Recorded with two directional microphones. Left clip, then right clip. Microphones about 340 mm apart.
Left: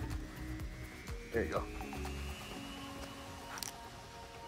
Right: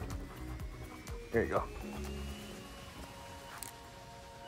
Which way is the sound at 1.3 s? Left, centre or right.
Centre.